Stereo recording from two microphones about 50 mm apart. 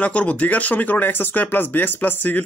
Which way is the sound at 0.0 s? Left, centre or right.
Left.